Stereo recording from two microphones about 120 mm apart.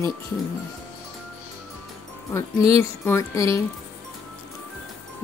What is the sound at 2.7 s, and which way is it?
Speech, 20° left (ahead or behind).